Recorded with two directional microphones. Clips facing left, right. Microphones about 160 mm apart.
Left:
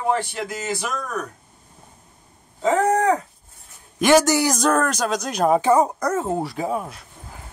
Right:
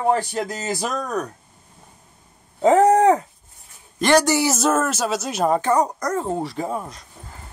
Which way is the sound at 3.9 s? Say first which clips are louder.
Left 1 dB; 5° left (ahead or behind).